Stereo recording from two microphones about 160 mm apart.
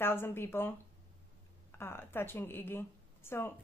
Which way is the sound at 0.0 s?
15° left (ahead or behind).